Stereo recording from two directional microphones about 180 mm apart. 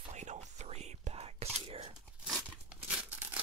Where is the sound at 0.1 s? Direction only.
40° right (ahead or behind).